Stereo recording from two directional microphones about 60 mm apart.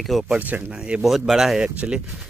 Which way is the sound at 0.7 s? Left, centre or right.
Centre.